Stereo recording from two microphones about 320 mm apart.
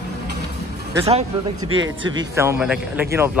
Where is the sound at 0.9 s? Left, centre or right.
Centre.